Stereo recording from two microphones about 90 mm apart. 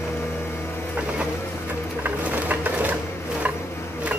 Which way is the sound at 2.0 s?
15° right (ahead or behind).